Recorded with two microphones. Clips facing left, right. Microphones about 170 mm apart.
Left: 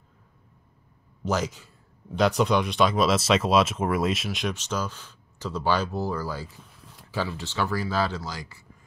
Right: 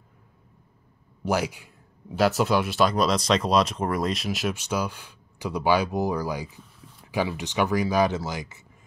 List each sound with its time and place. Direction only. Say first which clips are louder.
1.2 s speech: right 2 dB; 10° right (ahead or behind)